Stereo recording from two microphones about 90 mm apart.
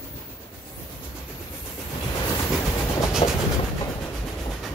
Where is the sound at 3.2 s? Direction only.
90° left.